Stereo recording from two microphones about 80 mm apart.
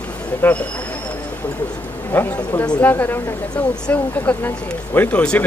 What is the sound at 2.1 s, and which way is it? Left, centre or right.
A man's voice, centre.